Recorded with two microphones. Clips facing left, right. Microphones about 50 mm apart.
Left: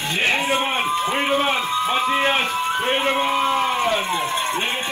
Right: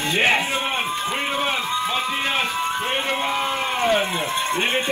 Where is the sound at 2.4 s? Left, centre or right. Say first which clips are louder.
Left 2 dB; left.